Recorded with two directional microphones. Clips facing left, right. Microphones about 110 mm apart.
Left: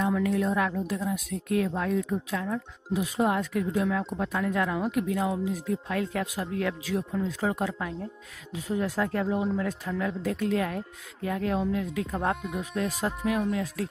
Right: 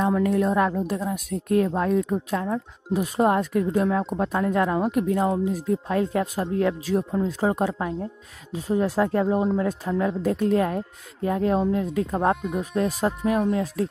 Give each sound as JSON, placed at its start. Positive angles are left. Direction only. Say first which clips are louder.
{"t": 0.0, "sound": "speech", "louder": "right 4 dB", "side_deg": -40}